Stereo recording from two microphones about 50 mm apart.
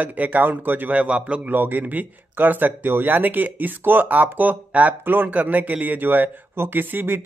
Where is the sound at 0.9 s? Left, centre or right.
Right.